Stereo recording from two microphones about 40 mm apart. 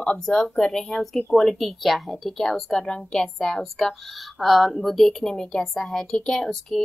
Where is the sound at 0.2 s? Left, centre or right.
Centre.